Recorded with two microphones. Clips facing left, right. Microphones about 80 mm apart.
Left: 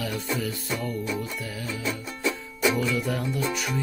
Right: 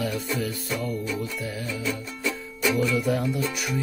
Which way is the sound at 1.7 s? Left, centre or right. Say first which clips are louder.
Right 1 dB; left.